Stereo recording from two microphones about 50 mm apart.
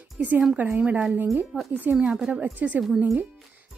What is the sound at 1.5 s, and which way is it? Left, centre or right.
Speech, centre.